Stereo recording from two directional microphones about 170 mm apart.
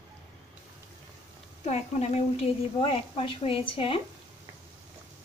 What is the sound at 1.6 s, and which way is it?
A woman's voice, 40° left (ahead or behind).